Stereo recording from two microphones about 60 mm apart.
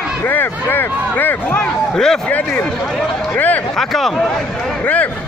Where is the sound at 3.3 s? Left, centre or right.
Left.